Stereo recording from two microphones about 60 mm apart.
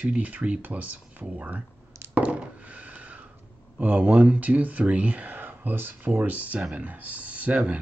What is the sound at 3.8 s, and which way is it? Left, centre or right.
Speech, right.